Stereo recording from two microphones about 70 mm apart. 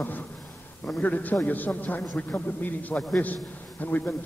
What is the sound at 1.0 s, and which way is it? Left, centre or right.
A man's voice, left.